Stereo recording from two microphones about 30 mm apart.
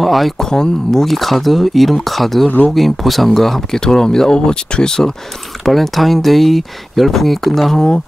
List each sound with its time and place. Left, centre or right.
0.0 s speech: centre
0.4 s speech: centre
1.0 s speech: centre
3.3 s speech: centre
5.7 s speech: centre